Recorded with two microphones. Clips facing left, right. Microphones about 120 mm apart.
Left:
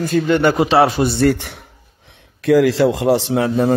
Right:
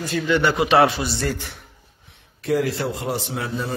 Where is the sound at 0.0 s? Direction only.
50° left (ahead or behind); by 1.6 s 70° left (ahead or behind).